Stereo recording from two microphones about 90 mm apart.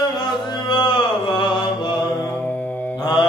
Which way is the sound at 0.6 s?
60° left (ahead or behind).